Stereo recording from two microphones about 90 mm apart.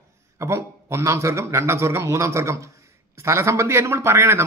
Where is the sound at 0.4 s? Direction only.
30° right (ahead or behind).